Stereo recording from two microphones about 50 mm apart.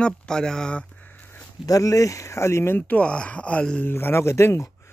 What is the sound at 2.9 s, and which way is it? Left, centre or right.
Speech, left.